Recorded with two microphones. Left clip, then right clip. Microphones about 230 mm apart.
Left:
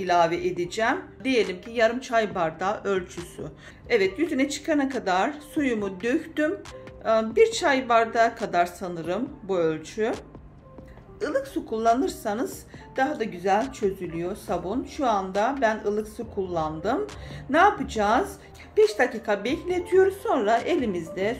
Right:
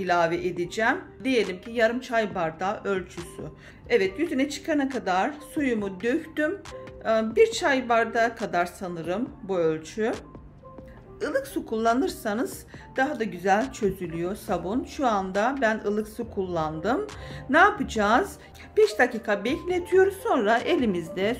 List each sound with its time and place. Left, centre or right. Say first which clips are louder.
0.0 s a woman's voice: left 2 dB; centre